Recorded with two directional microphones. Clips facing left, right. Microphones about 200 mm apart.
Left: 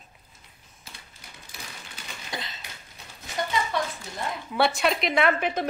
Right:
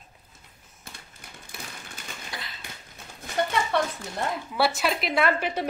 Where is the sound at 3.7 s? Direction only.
60° right (ahead or behind).